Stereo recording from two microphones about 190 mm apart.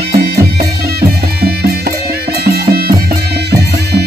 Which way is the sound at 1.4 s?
55° right (ahead or behind).